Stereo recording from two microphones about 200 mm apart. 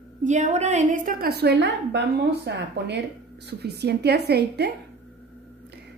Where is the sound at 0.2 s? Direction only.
35° right (ahead or behind); by 4.7 s 55° right (ahead or behind).